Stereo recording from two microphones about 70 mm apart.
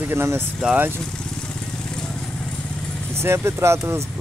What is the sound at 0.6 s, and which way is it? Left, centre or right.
Speech, centre.